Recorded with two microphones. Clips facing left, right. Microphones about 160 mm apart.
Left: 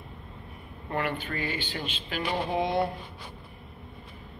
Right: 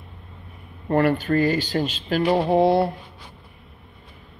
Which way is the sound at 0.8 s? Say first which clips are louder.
Right 11 dB; 40° right (ahead or behind).